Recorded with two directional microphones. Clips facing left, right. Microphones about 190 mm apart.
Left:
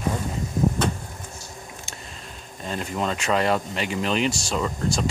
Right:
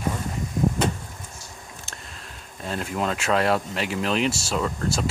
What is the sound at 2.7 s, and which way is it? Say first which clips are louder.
Speech: even; 5° right (ahead or behind).